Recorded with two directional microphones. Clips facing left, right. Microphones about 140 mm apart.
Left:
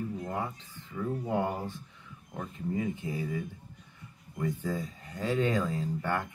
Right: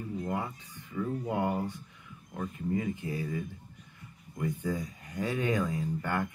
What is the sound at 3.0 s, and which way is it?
Speech, 20° left (ahead or behind).